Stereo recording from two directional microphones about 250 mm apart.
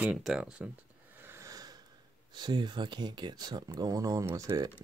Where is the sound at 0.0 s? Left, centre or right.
Centre.